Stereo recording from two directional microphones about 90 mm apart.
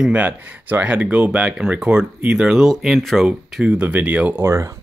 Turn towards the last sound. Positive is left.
turn(degrees=-35)  # may be behind; listen again after turning